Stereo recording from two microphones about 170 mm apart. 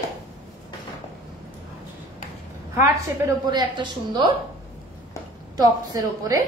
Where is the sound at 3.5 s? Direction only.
25° right (ahead or behind).